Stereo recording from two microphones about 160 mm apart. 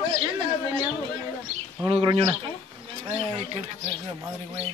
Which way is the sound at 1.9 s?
35° right (ahead or behind).